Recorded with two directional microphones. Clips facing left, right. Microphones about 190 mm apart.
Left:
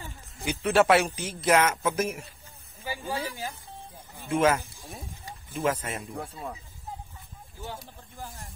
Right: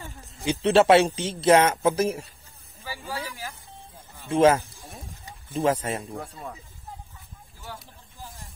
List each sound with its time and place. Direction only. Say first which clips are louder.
0.4 s speech: right 4 dB; 25° right (ahead or behind)
2.8 s snake: left 2 dB; 15° left (ahead or behind)
3.3 s speech: left 2 dB; 30° left (ahead or behind)
4.3 s speech: right 5 dB; 30° right (ahead or behind)
6.1 s speech: even; centre (ahead or behind)